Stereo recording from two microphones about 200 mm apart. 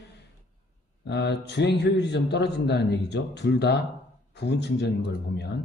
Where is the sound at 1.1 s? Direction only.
60° left (ahead or behind).